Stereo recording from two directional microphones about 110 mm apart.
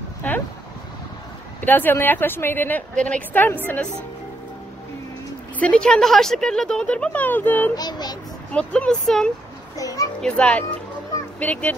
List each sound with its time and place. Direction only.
0.2 s speech: 15° left (ahead or behind)
1.6 s speech: 15° left (ahead or behind)
5.6 s speech: 10° left (ahead or behind)
7.7 s child singing: 40° left (ahead or behind)
8.5 s speech: 10° left (ahead or behind)
9.8 s children playing: 30° left (ahead or behind)
10.2 s speech: 10° left (ahead or behind)